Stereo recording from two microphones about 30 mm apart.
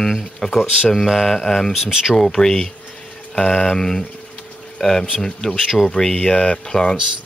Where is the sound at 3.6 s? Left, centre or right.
Centre.